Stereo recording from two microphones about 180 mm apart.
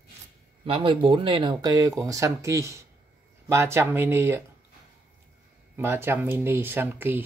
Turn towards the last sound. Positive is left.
turn(degrees=-10)  # may be behind; listen again after turning